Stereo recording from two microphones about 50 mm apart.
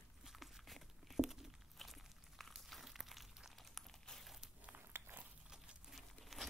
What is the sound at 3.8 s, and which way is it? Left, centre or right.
Crumpling, centre.